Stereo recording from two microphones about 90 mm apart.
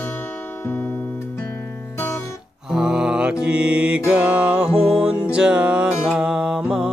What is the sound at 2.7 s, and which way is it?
Mantra, 10° right (ahead or behind).